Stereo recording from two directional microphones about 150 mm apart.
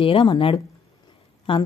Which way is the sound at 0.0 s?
35° left (ahead or behind).